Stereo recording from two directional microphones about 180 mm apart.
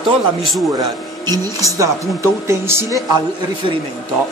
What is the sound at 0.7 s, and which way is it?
Speech, 20° right (ahead or behind).